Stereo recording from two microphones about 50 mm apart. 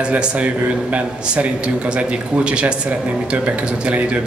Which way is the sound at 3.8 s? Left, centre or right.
Right.